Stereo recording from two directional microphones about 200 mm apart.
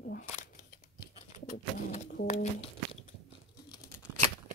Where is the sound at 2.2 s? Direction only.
30° left (ahead or behind).